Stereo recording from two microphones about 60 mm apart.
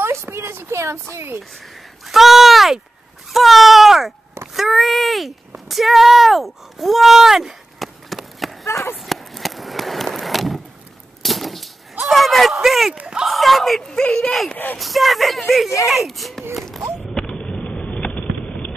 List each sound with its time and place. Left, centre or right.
0.0 s a sound: right
2.0 s speech: centre
4.6 s a sound: centre
5.7 s speech: centre
8.6 s speech: left
8.9 s skateboard: centre
11.2 s a sound: centre
12.6 s speech: centre
12.9 s speech: centre
13.3 s speech: centre
14.8 s speech: centre
17.1 s vehicle: centre